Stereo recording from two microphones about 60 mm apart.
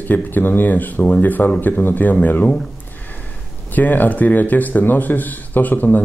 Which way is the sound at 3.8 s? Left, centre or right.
Left.